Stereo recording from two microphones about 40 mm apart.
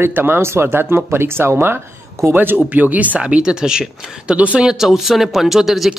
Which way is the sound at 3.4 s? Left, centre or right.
Centre.